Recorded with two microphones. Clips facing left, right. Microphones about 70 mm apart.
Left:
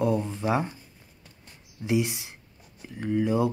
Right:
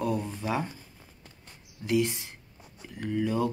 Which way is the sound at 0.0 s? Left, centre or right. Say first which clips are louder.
Left 5 dB; centre.